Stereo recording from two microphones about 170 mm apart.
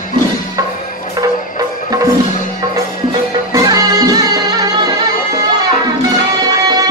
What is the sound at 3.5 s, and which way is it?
Music, 25° right (ahead or behind).